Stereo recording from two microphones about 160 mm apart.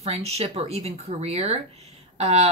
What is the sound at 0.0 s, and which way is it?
Speech, 40° right (ahead or behind).